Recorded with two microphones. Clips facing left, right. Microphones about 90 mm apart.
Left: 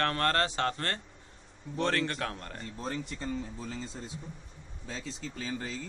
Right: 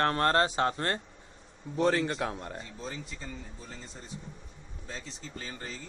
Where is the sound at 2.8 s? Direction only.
60° left (ahead or behind).